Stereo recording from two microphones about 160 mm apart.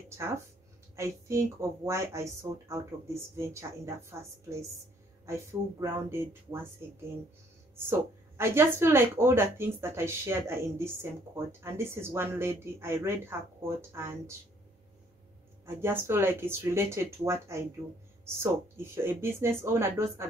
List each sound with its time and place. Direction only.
0.9 s speech: 20° right (ahead or behind)
8.4 s speech: 15° right (ahead or behind)
15.6 s speech: 15° right (ahead or behind)